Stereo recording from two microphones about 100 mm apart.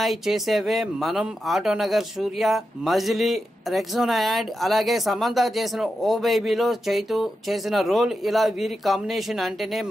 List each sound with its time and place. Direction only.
0.0 s speech: centre (ahead or behind)